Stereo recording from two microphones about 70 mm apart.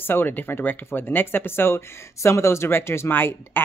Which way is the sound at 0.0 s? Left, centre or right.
Left.